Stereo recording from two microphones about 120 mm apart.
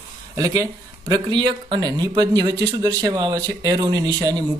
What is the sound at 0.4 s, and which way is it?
Speech, 30° right (ahead or behind).